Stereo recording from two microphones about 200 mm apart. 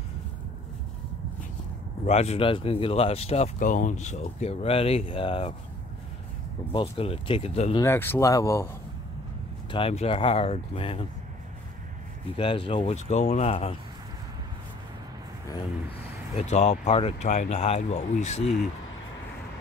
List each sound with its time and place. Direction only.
2.0 s speech: 35° left (ahead or behind)
6.7 s speech: 25° left (ahead or behind)
7.7 s speech: 10° left (ahead or behind)
9.7 s speech: 25° left (ahead or behind)
12.4 s speech: 25° left (ahead or behind)
16.3 s speech: 35° left (ahead or behind)